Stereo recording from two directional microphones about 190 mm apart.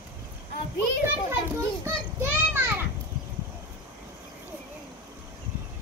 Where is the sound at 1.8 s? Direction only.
10° right (ahead or behind).